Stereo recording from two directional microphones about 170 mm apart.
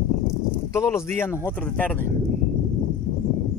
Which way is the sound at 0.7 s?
15° left (ahead or behind).